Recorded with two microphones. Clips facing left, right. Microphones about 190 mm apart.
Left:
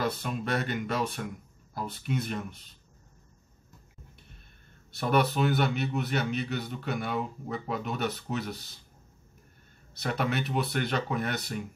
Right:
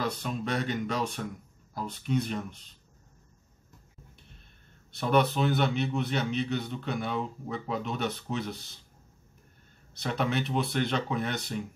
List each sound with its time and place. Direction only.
0.0 s a man's voice: 5° left (ahead or behind)
4.9 s a man's voice: 5° left (ahead or behind)
10.0 s a man's voice: 5° left (ahead or behind)